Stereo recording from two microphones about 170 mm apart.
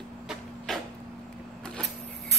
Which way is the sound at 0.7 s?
Centre (ahead or behind).